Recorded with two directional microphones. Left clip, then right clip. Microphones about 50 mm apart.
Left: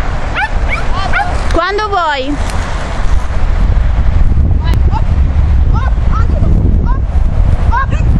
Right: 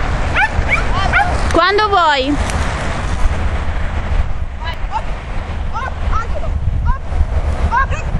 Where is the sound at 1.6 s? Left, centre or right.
Right.